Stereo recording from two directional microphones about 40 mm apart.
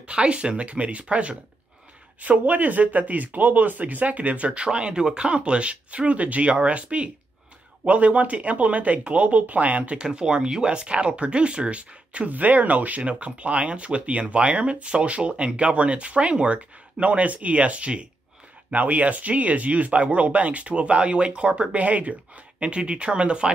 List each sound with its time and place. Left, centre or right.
0.0 s speech: right
4.5 s speech: right
9.9 s speech: right
12.3 s speech: right
18.7 s speech: right